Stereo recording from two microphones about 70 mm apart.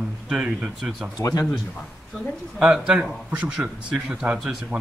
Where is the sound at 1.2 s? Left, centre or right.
Left.